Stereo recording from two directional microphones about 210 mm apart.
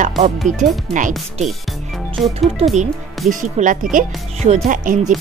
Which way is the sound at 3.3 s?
40° right (ahead or behind).